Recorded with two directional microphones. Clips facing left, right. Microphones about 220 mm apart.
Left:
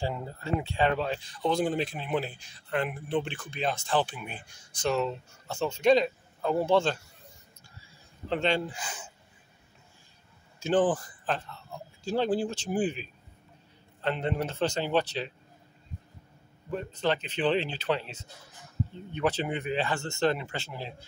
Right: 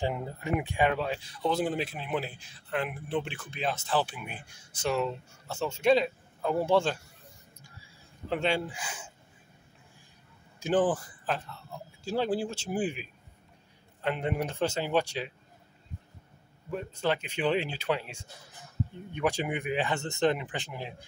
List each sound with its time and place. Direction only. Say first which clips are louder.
0.0 s speech: right 2 dB; 20° right (ahead or behind)
8.3 s speech: left 1 dB; 10° right (ahead or behind)
10.6 s speech: left 1 dB; 10° right (ahead or behind)
16.7 s speech: left 1 dB; 10° right (ahead or behind)